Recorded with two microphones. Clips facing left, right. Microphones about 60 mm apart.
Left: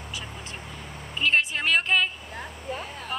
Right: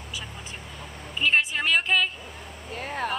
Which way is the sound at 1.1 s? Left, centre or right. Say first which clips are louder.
Right 1 dB; centre.